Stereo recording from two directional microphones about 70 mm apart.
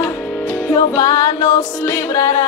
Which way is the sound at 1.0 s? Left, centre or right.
Left.